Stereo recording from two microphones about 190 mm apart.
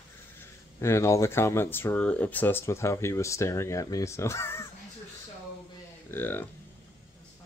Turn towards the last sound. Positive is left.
turn(degrees=10)  # may be behind; listen again after turning